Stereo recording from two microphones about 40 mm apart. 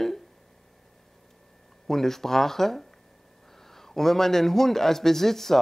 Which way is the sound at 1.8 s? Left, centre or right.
Centre.